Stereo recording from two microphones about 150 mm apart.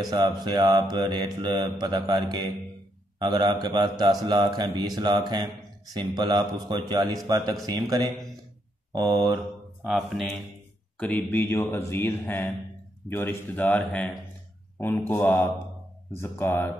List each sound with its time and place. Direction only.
0.1 s mantra: 25° right (ahead or behind)
9.8 s a man's voice: centre (ahead or behind)